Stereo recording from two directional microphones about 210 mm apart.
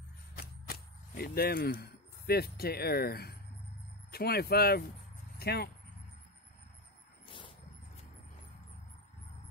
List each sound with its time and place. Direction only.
0.4 s speech: 45° left (ahead or behind)